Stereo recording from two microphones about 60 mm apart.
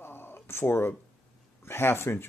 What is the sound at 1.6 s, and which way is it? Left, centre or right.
Speech, left.